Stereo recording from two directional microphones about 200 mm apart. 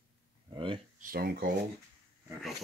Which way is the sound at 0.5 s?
25° right (ahead or behind).